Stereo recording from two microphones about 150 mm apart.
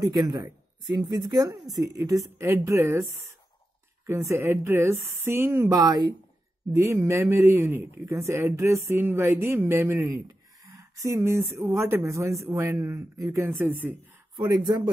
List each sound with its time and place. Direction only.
0.0 s a woman's voice: 25° right (ahead or behind)
14.3 s a woman's voice: 25° right (ahead or behind)